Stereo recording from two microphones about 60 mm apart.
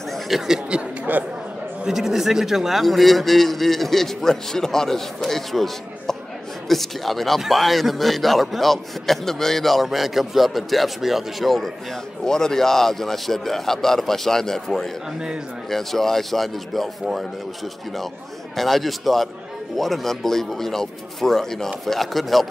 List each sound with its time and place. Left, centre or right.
0.1 s chatter: centre
1.1 s speech: right
1.9 s a man's voice: centre
18.6 s a man's voice: centre